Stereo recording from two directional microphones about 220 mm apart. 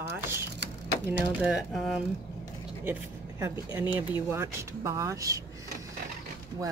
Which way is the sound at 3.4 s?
10° right (ahead or behind).